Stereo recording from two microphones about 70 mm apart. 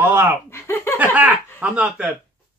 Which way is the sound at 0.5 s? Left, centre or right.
Left.